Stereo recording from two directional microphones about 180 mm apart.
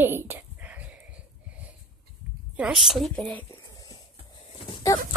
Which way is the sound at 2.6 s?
5° right (ahead or behind).